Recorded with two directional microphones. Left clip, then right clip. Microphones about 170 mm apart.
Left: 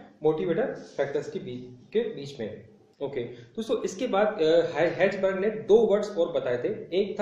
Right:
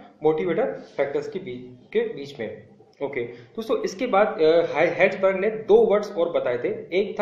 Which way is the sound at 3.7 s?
15° right (ahead or behind).